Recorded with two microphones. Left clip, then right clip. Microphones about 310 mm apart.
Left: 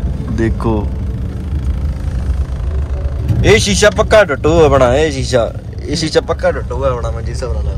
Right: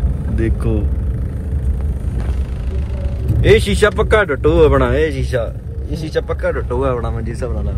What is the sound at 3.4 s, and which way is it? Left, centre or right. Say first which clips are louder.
Speech: left 3 dB; centre.